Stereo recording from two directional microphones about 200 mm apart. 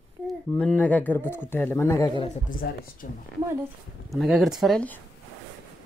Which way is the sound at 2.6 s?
50° left (ahead or behind).